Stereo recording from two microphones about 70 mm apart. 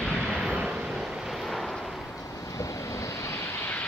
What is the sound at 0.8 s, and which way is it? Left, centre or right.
Vehicle, centre.